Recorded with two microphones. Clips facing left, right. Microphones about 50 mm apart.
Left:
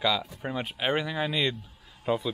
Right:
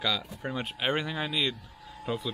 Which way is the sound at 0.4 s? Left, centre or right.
Centre.